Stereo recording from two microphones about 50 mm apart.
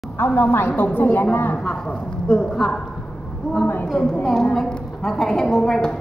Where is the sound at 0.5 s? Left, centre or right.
Left.